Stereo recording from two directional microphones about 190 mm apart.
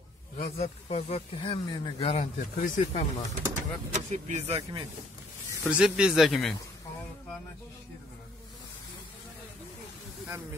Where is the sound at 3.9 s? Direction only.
40° right (ahead or behind).